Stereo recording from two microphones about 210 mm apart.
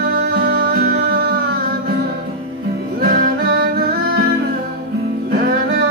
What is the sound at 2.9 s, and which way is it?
Music, 45° right (ahead or behind).